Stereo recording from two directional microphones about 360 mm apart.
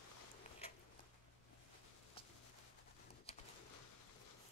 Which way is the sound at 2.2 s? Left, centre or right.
Centre.